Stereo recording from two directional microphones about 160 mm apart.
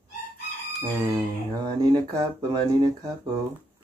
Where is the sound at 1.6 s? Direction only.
25° right (ahead or behind).